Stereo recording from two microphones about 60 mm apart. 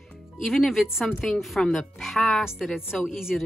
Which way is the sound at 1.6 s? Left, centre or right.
Centre.